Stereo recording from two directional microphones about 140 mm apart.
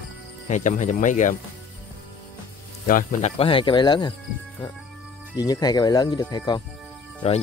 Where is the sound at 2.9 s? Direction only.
85° left.